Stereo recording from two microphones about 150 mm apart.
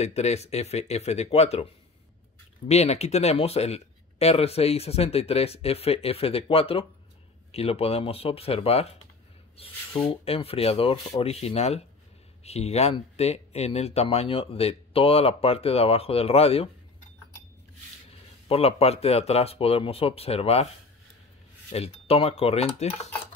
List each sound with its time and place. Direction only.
0.0 s speech: 45° left (ahead or behind)
2.7 s speech: 45° left (ahead or behind)
10.2 s speech: 40° left (ahead or behind)
18.5 s speech: 45° left (ahead or behind)
21.7 s speech: 40° left (ahead or behind)